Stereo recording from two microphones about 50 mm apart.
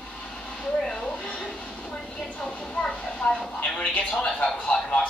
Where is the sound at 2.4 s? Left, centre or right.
Centre.